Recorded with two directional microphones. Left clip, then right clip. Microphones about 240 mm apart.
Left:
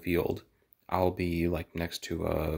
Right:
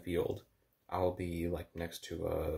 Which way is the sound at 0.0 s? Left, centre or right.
Left.